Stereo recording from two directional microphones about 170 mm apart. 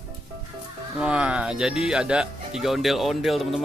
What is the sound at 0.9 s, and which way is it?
Speech, 5° right (ahead or behind).